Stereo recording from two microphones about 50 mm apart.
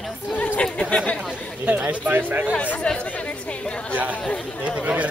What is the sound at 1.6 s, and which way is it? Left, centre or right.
Speech, right.